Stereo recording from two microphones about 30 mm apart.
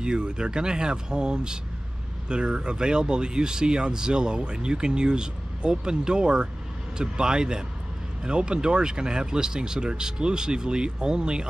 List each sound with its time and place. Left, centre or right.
0.0 s speech: right